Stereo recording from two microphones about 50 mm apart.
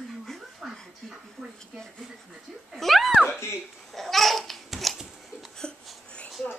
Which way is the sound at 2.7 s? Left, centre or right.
Centre.